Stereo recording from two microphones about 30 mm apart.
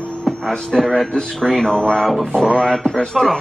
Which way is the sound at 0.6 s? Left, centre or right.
Centre.